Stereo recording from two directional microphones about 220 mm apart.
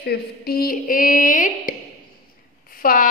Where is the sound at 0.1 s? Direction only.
40° left (ahead or behind).